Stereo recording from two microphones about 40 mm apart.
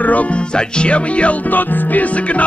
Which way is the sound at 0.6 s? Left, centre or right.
Left.